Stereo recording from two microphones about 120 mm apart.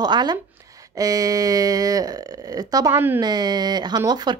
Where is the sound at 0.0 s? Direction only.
35° right (ahead or behind).